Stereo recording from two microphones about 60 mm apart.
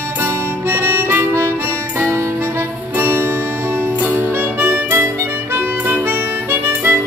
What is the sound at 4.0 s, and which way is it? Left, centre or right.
Harmonica, right.